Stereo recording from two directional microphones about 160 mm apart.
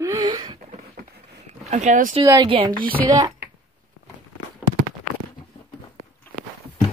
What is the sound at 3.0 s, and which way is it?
Speech, 20° right (ahead or behind).